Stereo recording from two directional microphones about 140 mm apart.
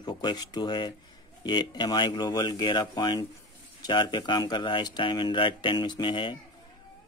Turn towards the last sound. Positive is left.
turn(degrees=35)  # may be behind; listen again after turning